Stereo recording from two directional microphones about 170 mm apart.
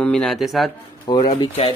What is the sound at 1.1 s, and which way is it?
Speech, 25° left (ahead or behind).